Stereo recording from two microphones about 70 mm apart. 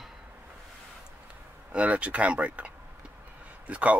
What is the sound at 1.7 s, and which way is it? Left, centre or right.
Speech, centre.